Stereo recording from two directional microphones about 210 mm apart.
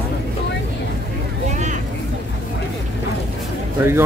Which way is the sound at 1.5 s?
35° right (ahead or behind).